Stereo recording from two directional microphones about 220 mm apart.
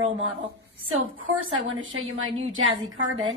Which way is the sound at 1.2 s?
65° right (ahead or behind).